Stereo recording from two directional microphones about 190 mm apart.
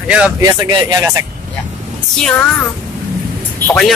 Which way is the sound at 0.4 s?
20° right (ahead or behind).